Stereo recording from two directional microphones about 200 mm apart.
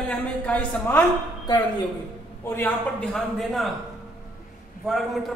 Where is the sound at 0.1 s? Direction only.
5° left (ahead or behind).